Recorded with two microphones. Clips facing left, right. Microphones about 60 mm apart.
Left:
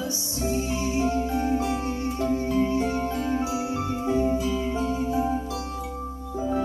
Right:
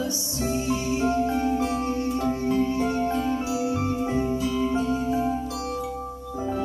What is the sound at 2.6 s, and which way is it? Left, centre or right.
Music, left.